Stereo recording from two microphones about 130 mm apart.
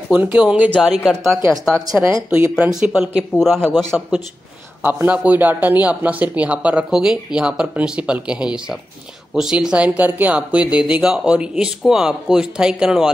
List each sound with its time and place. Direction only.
0.1 s a man's voice: 10° right (ahead or behind)
2.2 s a man's voice: 10° right (ahead or behind)
4.8 s a man's voice: 10° right (ahead or behind)